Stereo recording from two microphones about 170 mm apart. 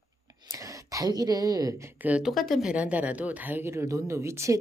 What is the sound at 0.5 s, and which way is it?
Speech, 20° right (ahead or behind).